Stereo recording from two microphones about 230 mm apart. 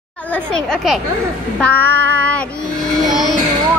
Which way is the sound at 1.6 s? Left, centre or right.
Centre.